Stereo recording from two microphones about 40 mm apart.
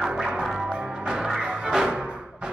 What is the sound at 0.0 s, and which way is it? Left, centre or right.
Music, centre.